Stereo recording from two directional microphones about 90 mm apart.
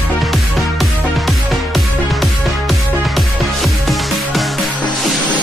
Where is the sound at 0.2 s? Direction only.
Centre (ahead or behind).